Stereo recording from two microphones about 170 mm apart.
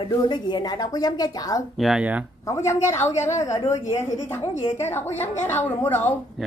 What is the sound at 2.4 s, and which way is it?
A woman's voice, 15° left (ahead or behind).